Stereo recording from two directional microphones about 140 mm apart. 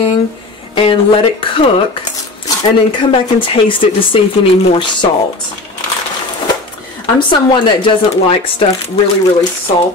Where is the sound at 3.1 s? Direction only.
40° left (ahead or behind).